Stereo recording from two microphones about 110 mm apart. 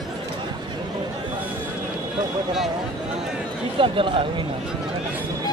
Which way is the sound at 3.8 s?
50° right (ahead or behind).